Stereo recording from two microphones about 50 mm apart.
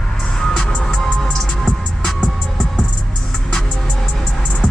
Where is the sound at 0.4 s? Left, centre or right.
Centre.